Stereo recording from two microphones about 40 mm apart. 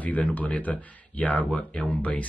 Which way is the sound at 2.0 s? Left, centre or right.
Left.